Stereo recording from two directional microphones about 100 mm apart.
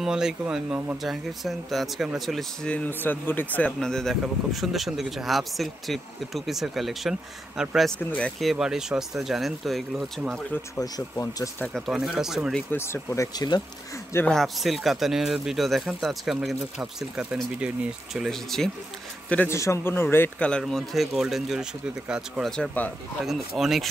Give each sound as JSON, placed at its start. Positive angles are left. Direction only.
{"t": 0.0, "sound": "speech", "side_deg": -5}
{"t": 2.7, "sound": "speech", "side_deg": 20}
{"t": 3.8, "sound": "speech", "side_deg": 5}
{"t": 8.0, "sound": "speech", "side_deg": 15}
{"t": 8.4, "sound": "speech", "side_deg": -5}
{"t": 10.8, "sound": "speech", "side_deg": 35}
{"t": 11.7, "sound": "speech", "side_deg": 0}
{"t": 12.7, "sound": "speech", "side_deg": 25}
{"t": 14.2, "sound": "speech", "side_deg": 5}
{"t": 19.2, "sound": "speech", "side_deg": 15}
{"t": 19.5, "sound": "speech", "side_deg": 25}
{"t": 20.3, "sound": "speech", "side_deg": 10}
{"t": 22.6, "sound": "speech", "side_deg": 15}
{"t": 23.2, "sound": "speech", "side_deg": 0}